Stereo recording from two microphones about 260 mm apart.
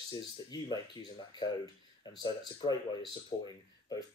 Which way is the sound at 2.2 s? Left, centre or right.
Centre.